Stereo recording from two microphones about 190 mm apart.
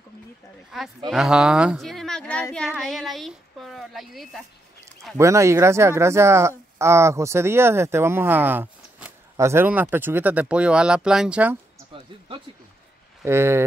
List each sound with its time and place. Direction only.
0.7 s speech: centre (ahead or behind)
5.1 s speech: 15° right (ahead or behind)
13.2 s speech: 15° right (ahead or behind)